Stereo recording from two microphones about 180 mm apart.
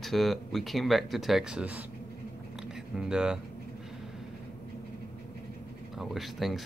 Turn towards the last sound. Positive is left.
turn(degrees=0)  # may be behind; listen again after turning